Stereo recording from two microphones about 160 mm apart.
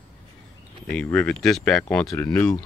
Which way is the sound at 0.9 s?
5° left (ahead or behind).